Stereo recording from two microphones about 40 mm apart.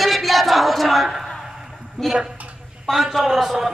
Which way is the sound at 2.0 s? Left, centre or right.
Centre.